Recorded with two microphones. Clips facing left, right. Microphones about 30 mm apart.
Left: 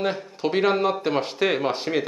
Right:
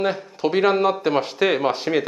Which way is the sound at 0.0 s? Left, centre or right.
Centre.